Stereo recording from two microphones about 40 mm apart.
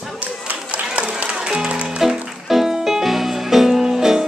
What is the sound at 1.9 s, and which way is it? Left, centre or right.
Music, centre.